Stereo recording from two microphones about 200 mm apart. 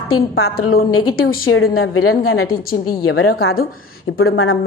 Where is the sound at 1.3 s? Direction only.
90° left.